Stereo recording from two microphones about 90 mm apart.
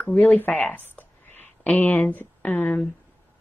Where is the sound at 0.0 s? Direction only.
15° left (ahead or behind).